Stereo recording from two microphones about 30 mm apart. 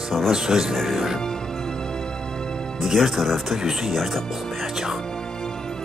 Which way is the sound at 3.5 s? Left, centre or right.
Centre.